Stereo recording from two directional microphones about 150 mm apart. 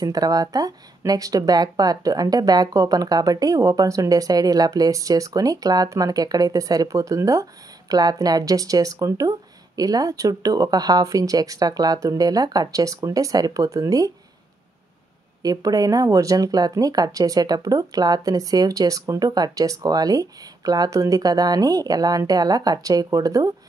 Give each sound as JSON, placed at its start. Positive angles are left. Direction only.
{"t": 0.0, "sound": "speech", "side_deg": -25}
{"t": 15.4, "sound": "speech", "side_deg": -25}